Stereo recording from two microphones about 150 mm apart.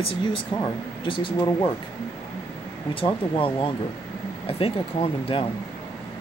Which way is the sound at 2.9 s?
35° left (ahead or behind).